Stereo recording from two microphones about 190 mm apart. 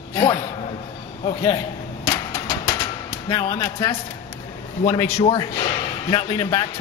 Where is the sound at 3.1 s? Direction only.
20° left (ahead or behind).